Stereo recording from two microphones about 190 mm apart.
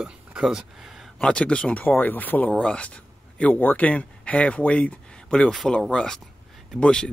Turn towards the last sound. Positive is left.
turn(degrees=5)  # may be behind; listen again after turning